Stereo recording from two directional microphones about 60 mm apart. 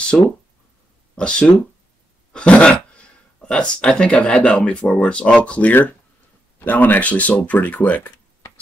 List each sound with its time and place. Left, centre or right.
0.1 s speech: centre